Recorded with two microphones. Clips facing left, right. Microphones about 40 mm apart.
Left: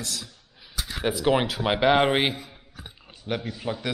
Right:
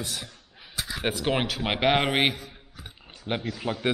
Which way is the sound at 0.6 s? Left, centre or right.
Right.